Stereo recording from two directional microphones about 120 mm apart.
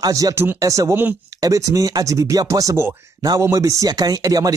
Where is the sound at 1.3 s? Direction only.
30° right (ahead or behind).